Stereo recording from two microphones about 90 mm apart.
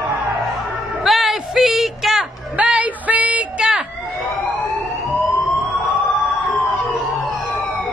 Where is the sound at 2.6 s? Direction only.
15° right (ahead or behind).